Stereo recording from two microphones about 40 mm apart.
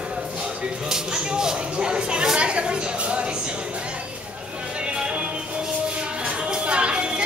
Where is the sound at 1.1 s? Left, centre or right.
Right.